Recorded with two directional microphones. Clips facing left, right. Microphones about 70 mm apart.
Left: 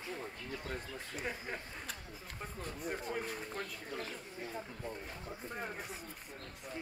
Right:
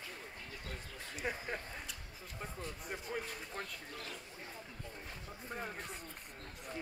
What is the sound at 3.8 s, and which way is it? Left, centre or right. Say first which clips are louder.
Speech: left 5 dB; left.